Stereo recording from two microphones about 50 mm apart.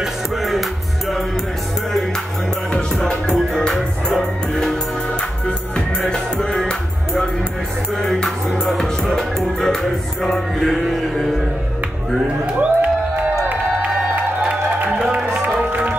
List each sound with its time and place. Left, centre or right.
0.0 s music: centre
3.3 s music: centre
6.0 s music: centre
8.0 s music: centre
12.5 s music: right
15.4 s music: right